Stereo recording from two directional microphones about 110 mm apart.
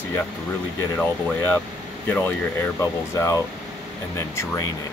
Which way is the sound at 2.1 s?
15° left (ahead or behind).